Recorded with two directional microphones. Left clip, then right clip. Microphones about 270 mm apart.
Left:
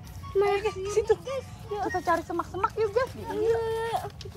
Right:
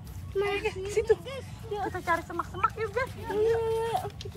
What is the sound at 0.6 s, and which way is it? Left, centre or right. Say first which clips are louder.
Speech: left 2 dB; centre.